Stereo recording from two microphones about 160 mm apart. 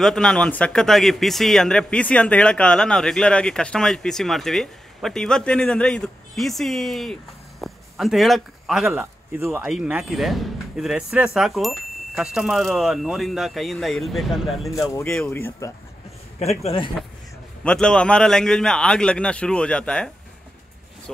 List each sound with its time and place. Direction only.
0.0 s speech: 5° left (ahead or behind)
9.4 s speech: 15° right (ahead or behind)
9.7 s speech: 5° right (ahead or behind)
14.8 s speech: 20° left (ahead or behind)
15.0 s speech: 5° left (ahead or behind)
15.3 s speech: 15° left (ahead or behind)
16.3 s a man's voice: 40° left (ahead or behind)
17.6 s speech: 5° left (ahead or behind)